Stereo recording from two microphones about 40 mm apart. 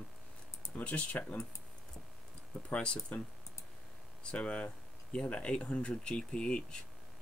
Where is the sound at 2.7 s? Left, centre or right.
Left.